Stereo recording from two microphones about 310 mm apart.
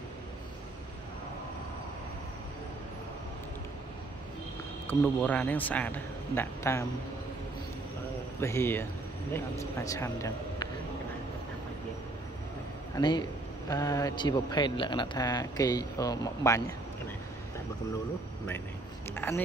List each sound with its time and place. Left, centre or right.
4.8 s a man's voice: centre
8.4 s a man's voice: centre
12.9 s a man's voice: centre
19.1 s a sound: centre